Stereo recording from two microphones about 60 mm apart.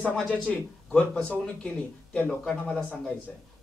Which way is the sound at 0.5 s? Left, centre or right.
Centre.